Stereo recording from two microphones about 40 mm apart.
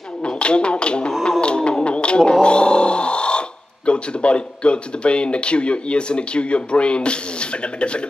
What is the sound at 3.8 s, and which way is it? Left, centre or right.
Speech, left.